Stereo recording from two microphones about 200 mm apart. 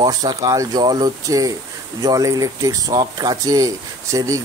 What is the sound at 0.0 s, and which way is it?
Speech, 20° right (ahead or behind).